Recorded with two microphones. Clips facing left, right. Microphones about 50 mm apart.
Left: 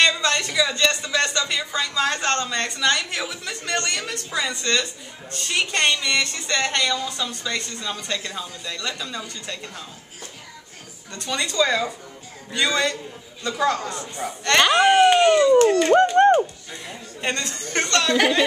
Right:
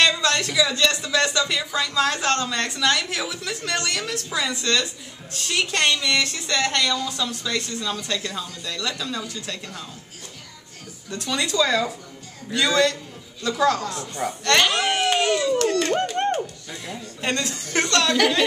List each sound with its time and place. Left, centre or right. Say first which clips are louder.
0.0 s speech: even; centre
11.1 s speech: right 1 dB; centre
15.5 s speech: left 6 dB; centre
16.0 s speech: left 8 dB; centre